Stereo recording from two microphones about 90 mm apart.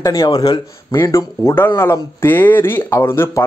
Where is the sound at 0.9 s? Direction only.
35° left (ahead or behind).